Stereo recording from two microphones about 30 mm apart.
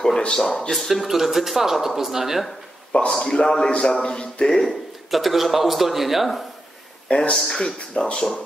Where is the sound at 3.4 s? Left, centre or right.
Left.